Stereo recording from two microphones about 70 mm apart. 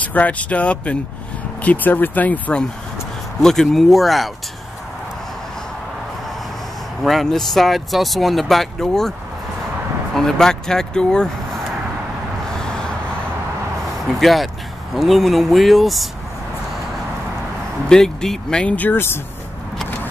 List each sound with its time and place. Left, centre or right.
0.0 s speech: left
3.4 s speech: centre
7.0 s speech: centre
10.1 s speech: centre
14.0 s speech: centre
17.8 s speech: centre
18.8 s speech: left